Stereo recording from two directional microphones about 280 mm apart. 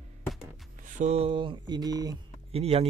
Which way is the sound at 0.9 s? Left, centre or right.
Right.